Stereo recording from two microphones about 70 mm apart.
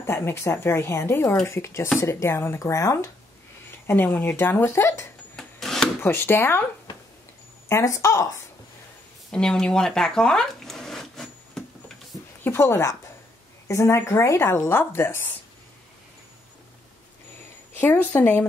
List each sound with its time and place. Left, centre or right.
0.0 s speech: left
3.8 s speech: left
5.3 s wood: centre
5.9 s speech: left
7.6 s speech: left
9.3 s zipper: centre
12.4 s speech: left
17.7 s a woman's voice: left